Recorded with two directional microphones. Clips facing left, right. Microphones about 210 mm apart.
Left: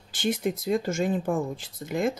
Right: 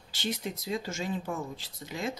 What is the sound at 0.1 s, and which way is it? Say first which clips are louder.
Speech: left 8 dB; 50° left (ahead or behind).